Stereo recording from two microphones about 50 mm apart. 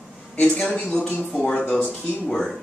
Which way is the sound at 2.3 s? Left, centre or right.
Centre.